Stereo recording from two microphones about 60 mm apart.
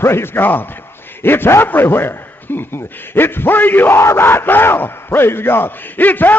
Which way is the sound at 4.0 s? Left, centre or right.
Left.